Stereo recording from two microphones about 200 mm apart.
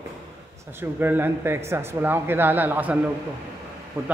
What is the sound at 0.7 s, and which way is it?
Speech, 10° right (ahead or behind).